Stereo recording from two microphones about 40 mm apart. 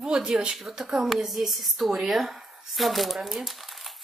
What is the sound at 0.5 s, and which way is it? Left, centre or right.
Speech, centre.